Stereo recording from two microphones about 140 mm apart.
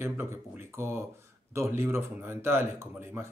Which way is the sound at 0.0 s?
15° right (ahead or behind).